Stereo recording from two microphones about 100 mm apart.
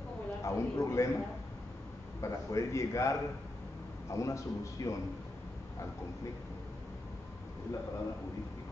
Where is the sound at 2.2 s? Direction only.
30° left (ahead or behind).